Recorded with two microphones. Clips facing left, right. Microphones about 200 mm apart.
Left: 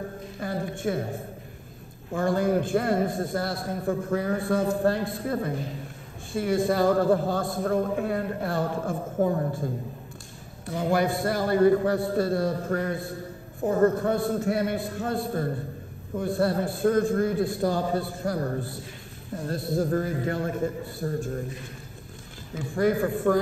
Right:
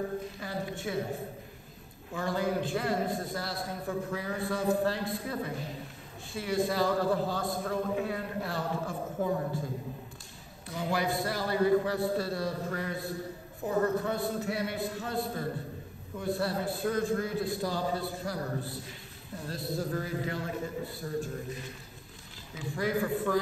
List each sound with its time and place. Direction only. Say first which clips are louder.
0.4 s a man's voice: left 6 dB; 50° left (ahead or behind)
2.1 s a man's voice: left 7 dB; 50° left (ahead or behind)
10.7 s a man's voice: left 7 dB; 50° left (ahead or behind)
22.5 s a man's voice: left 7 dB; 50° left (ahead or behind)